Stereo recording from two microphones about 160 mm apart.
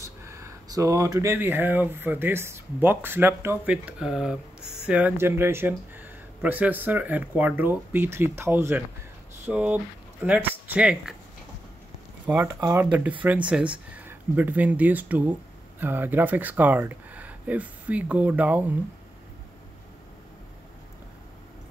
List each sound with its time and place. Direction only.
0.0 s speech: 20° right (ahead or behind)
12.5 s speech: 20° right (ahead or behind)
12.8 s speech: 10° right (ahead or behind)